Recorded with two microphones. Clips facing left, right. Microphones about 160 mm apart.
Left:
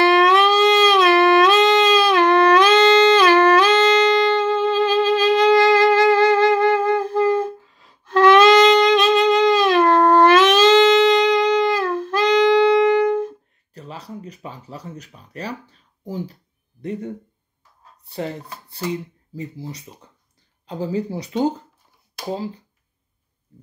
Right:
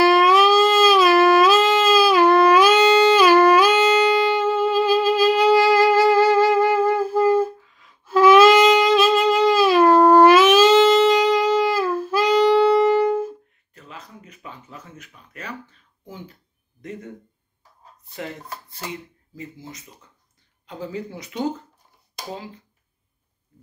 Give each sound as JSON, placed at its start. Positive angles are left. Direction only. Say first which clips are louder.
{"t": 0.0, "sound": "music", "louder": "even", "side_deg": -5}
{"t": 7.6, "sound": "music", "louder": "left 2 dB", "side_deg": 35}
{"t": 8.0, "sound": "saxophone", "louder": "even", "side_deg": -5}
{"t": 13.7, "sound": "a sound", "louder": "left 7 dB", "side_deg": 35}
{"t": 16.8, "sound": "speech", "louder": "left 7 dB", "side_deg": 30}